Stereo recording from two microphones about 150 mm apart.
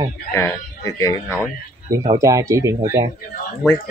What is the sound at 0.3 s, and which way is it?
Speech, 20° left (ahead or behind).